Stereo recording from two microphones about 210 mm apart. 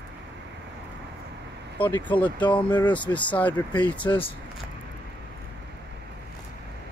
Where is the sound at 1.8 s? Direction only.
10° left (ahead or behind).